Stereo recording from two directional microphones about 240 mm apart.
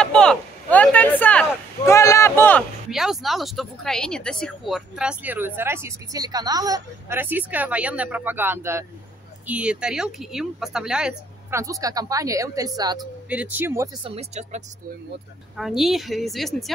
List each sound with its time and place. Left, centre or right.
0.0 s a sound: centre
1.9 s speech: centre
2.9 s speech: centre
14.0 s speech: right
15.5 s a woman's voice: centre